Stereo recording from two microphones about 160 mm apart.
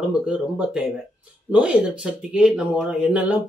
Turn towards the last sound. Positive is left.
turn(degrees=-5)  # may be behind; listen again after turning